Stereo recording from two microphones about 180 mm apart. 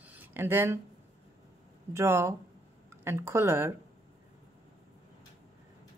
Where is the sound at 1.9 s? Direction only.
15° right (ahead or behind).